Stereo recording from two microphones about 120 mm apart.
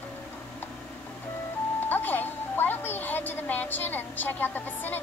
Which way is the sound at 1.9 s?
15° left (ahead or behind).